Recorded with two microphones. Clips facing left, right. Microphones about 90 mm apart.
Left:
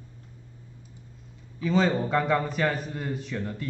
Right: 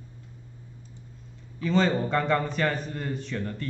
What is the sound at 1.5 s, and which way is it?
A man's voice, 5° left (ahead or behind).